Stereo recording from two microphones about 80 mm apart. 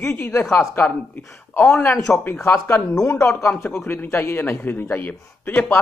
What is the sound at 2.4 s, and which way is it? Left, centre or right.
A man's voice, left.